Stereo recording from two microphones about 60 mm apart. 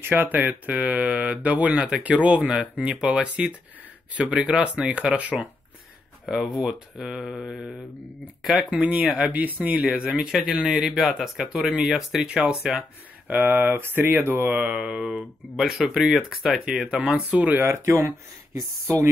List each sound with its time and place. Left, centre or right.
0.0 s speech: right; by 8.6 s centre
8.6 s speech: right
10.3 s speech: centre
13.3 s speech: right
14.5 s speech: centre
17.6 s speech: right